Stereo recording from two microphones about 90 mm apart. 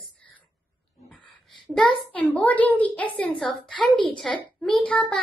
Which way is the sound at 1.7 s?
5° left (ahead or behind).